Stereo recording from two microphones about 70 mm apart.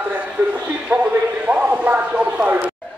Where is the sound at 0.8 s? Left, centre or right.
Right.